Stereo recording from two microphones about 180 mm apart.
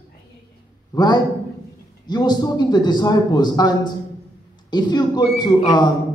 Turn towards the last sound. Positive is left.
turn(degrees=25)  # may be behind; listen again after turning